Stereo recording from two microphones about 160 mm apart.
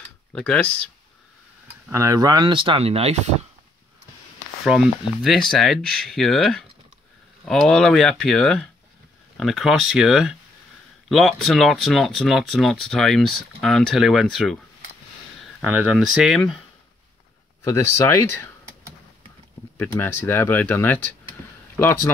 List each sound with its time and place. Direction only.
0.3 s speech: 5° left (ahead or behind)
1.9 s speech: 20° right (ahead or behind); by 3.3 s 45° right (ahead or behind)
4.6 s speech: centre (ahead or behind)
15.6 s speech: 10° right (ahead or behind)
17.6 s speech: 20° left (ahead or behind)
19.8 s speech: 15° left (ahead or behind)